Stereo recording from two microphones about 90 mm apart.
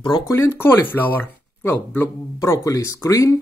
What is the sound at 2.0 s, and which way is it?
Speech, 30° left (ahead or behind).